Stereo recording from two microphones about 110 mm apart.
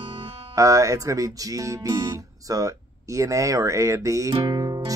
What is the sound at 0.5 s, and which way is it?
Speech, 30° right (ahead or behind).